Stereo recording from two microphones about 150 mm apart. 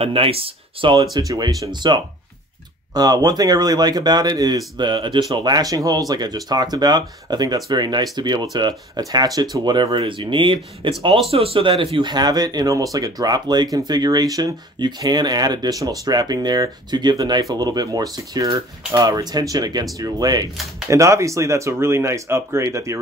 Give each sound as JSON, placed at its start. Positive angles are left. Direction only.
{"t": 0.0, "sound": "speech", "side_deg": -40}
{"t": 1.1, "sound": "speech", "side_deg": -25}